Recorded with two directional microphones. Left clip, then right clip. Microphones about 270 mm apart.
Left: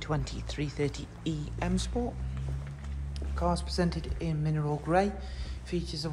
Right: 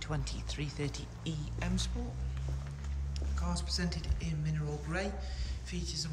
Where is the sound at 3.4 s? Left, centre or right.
Centre.